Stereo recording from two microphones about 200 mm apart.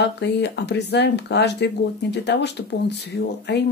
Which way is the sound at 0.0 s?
60° left (ahead or behind).